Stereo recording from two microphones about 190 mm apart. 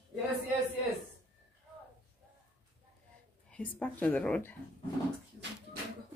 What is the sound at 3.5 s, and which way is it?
Speech, 10° left (ahead or behind).